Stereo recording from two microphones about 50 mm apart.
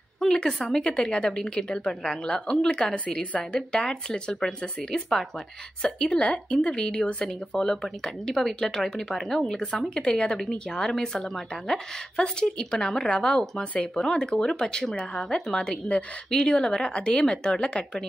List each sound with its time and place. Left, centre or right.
0.3 s a sound: centre
0.6 s a woman's voice: centre
9.9 s a woman's voice: centre